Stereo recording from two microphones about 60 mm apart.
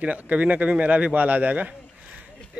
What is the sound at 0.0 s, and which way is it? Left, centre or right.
Speech, right.